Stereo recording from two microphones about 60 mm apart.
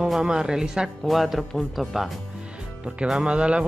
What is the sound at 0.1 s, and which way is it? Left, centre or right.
Speech, centre.